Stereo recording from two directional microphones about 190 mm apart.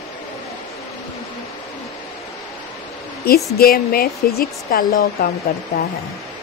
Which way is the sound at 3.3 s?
50° left (ahead or behind).